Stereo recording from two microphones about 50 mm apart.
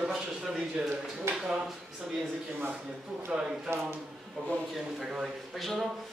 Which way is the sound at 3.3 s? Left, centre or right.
Centre.